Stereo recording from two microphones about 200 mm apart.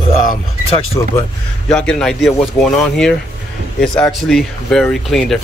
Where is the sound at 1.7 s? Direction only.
5° left (ahead or behind).